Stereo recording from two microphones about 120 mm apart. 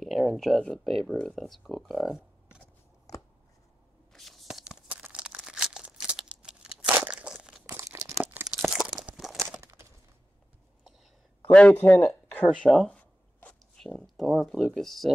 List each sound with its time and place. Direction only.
0.0 s speech: centre (ahead or behind)
4.1 s tearing: centre (ahead or behind)
5.0 s crumpling: 10° right (ahead or behind)
7.6 s crumpling: 20° right (ahead or behind)
8.5 s crunch: 5° right (ahead or behind)
9.6 s a sound: 25° right (ahead or behind)
11.4 s a man's voice: 10° left (ahead or behind)
12.6 s a sound: 5° left (ahead or behind)
14.4 s speech: centre (ahead or behind)